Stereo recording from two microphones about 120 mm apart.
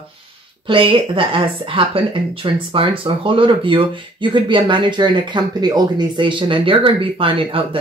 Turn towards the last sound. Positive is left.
turn(degrees=-50)  # may be behind; listen again after turning